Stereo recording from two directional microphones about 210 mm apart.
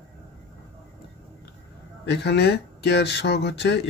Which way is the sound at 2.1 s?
55° left (ahead or behind).